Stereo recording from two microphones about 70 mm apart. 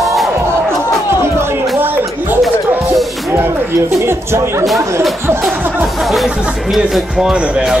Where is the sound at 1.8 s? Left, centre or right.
Right.